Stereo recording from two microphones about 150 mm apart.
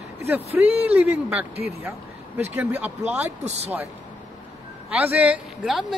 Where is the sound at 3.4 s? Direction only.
45° right (ahead or behind).